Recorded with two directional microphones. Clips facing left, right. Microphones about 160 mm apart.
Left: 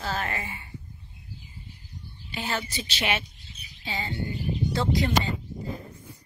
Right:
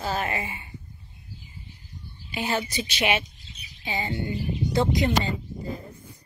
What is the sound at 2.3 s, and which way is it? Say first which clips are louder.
Speech: right 4 dB; 15° right (ahead or behind).